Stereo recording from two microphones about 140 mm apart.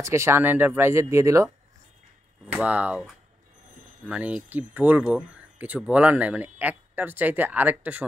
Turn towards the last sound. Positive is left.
turn(degrees=-10)  # may be behind; listen again after turning